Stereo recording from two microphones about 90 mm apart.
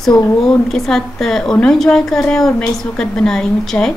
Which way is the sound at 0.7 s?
5° left (ahead or behind).